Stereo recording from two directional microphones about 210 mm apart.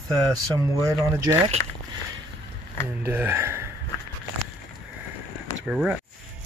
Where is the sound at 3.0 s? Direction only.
10° right (ahead or behind).